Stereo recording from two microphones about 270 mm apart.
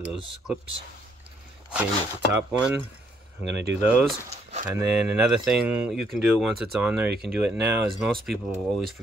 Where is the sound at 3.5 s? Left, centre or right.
Right.